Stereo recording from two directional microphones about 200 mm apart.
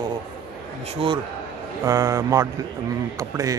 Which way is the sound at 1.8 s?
15° right (ahead or behind).